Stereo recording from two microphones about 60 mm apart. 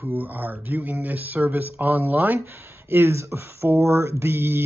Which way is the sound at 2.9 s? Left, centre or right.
Right.